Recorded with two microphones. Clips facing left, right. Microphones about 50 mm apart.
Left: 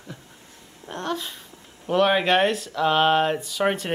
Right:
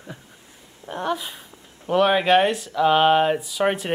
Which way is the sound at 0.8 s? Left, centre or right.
Centre.